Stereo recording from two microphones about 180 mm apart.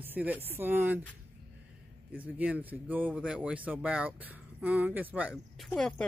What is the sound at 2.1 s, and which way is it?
Speech, 10° right (ahead or behind).